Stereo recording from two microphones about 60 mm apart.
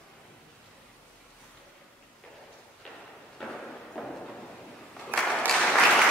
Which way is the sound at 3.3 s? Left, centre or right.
Centre.